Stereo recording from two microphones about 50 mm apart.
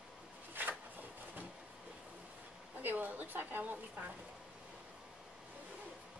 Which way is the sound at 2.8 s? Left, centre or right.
Right.